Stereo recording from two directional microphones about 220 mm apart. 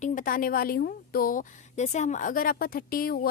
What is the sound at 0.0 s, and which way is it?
A woman's voice, 40° left (ahead or behind).